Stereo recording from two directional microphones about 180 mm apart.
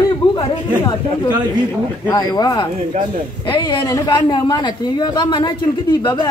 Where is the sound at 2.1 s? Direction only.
20° left (ahead or behind).